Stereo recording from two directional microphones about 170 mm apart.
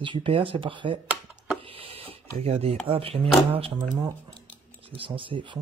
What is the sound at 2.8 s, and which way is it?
Speech, 35° right (ahead or behind).